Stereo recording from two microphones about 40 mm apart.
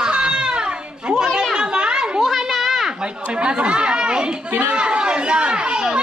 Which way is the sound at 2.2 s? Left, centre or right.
Centre.